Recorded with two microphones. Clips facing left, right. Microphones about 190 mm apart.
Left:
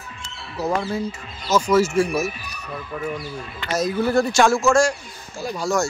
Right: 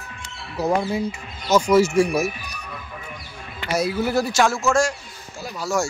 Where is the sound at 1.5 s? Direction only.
10° right (ahead or behind).